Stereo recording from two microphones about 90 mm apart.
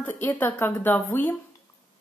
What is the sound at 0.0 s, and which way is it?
Speech, 20° left (ahead or behind).